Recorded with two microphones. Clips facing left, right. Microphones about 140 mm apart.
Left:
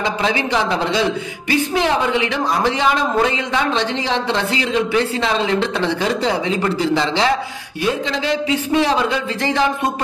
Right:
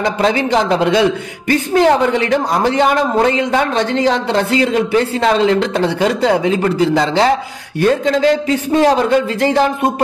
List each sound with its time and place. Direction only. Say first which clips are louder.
0.0 s speech: right 5 dB; 45° right (ahead or behind)